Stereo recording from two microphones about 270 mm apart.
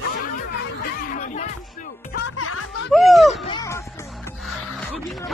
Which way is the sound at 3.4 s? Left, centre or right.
Centre.